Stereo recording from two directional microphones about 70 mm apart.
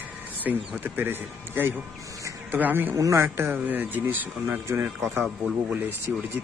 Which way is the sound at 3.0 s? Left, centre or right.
Right.